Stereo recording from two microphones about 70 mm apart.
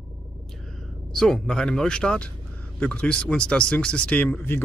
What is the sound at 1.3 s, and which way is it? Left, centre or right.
Speech, centre.